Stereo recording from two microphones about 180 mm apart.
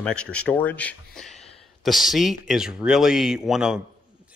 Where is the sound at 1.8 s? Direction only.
Centre (ahead or behind).